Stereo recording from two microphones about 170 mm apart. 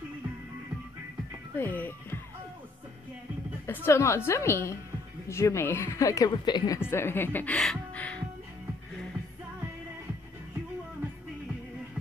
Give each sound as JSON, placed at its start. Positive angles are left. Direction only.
{"t": 1.6, "sound": "speech", "side_deg": 10}
{"t": 3.6, "sound": "a woman's voice", "side_deg": 15}
{"t": 6.8, "sound": "speech", "side_deg": 15}